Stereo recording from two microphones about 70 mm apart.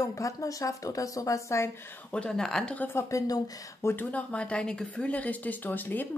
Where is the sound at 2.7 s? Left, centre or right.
Left.